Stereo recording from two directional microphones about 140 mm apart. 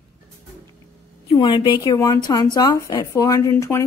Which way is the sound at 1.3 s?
35° left (ahead or behind).